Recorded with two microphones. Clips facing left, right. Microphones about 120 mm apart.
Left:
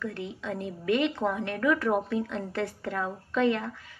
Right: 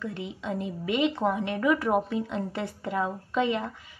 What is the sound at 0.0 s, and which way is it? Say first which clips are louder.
A woman's voice: even; 20° right (ahead or behind).